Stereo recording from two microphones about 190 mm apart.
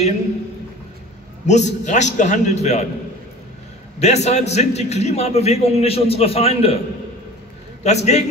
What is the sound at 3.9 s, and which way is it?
A man's voice, 35° left (ahead or behind).